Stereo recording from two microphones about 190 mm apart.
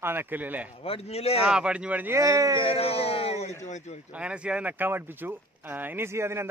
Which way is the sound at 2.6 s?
30° left (ahead or behind).